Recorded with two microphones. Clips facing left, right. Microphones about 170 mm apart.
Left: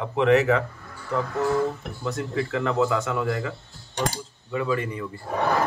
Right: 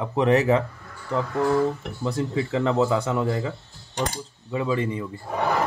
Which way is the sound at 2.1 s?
25° right (ahead or behind).